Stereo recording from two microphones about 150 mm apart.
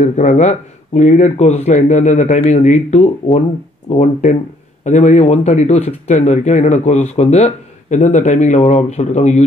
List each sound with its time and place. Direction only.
0.0 s speech: 55° left (ahead or behind)